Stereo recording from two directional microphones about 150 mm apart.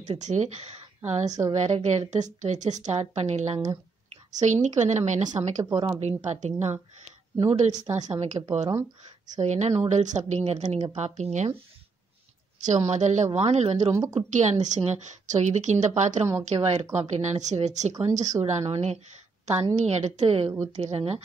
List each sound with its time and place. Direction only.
0.0 s a woman's voice: 50° right (ahead or behind)
5.7 s speech: 20° right (ahead or behind)
5.9 s a woman's voice: 50° right (ahead or behind)
12.8 s a woman's voice: 50° right (ahead or behind)
13.9 s speech: 20° right (ahead or behind)
14.3 s a woman's voice: 50° right (ahead or behind)